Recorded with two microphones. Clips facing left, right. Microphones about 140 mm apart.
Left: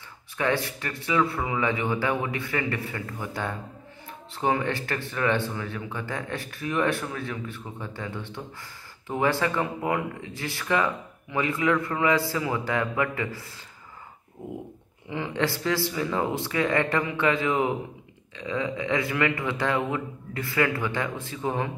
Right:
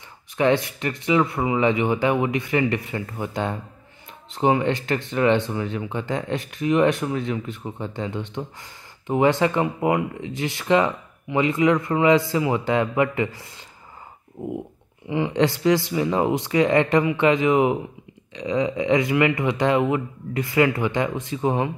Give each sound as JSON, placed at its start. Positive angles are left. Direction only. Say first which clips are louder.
{"t": 0.4, "sound": "speech", "louder": "right 6 dB", "side_deg": -20}
{"t": 15.0, "sound": "a man's voice", "louder": "right 7 dB", "side_deg": -15}